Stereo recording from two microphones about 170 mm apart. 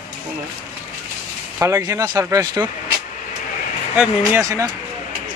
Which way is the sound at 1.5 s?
15° right (ahead or behind).